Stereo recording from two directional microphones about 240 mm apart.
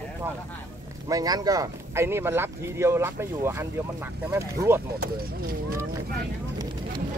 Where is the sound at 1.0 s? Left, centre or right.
Centre.